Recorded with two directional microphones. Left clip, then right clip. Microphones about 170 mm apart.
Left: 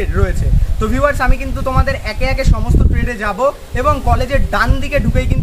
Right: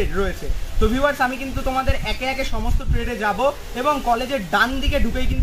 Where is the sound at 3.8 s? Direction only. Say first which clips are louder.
Left 4 dB; 25° left (ahead or behind).